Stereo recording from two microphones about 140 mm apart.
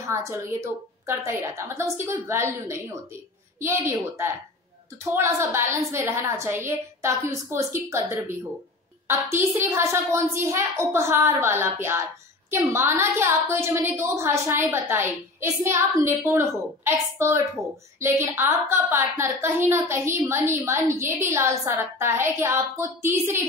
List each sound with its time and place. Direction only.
0.0 s a woman's voice: 20° right (ahead or behind)